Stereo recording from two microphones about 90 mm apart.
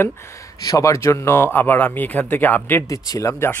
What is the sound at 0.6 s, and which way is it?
Speech, 40° left (ahead or behind).